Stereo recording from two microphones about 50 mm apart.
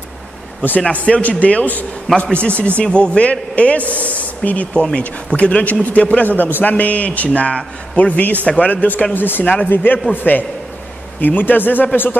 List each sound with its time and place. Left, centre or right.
0.6 s a man's voice: left
9.1 s a man's voice: left